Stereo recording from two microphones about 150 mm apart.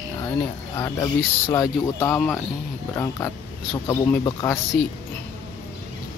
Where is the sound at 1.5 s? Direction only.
20° left (ahead or behind).